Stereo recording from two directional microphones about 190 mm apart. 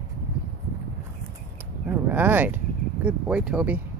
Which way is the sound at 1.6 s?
10° right (ahead or behind).